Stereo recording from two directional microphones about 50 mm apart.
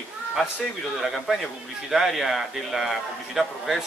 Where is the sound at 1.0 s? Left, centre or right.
Centre.